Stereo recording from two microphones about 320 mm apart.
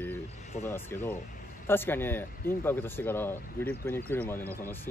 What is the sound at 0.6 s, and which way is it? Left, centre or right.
Speech, centre.